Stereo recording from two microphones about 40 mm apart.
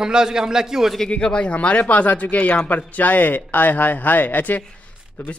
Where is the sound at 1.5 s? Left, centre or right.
Left.